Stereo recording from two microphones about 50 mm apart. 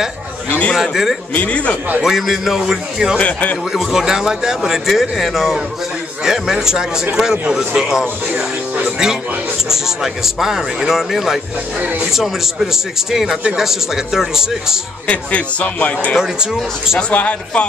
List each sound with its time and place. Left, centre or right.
0.7 s a man's voice: centre
1.3 s speech: left
2.0 s a man's voice: centre
3.2 s speech: left
3.7 s a man's voice: centre
11.8 s speech: right
12.1 s a man's voice: centre
15.0 s speech: left